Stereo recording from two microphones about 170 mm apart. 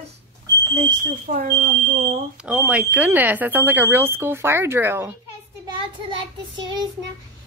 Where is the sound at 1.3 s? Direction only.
55° right (ahead or behind).